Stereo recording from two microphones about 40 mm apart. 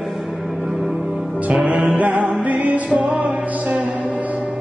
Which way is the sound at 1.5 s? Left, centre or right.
Right.